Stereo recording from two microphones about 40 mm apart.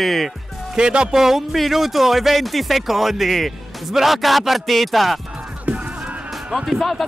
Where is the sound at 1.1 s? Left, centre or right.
Centre.